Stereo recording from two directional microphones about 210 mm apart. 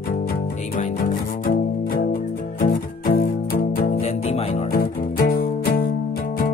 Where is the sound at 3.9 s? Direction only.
30° left (ahead or behind).